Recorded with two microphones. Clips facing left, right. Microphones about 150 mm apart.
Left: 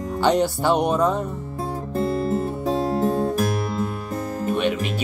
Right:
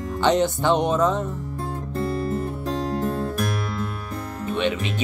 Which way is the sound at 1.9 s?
20° left (ahead or behind).